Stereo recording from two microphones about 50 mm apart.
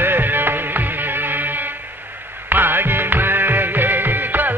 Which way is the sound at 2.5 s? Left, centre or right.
Right.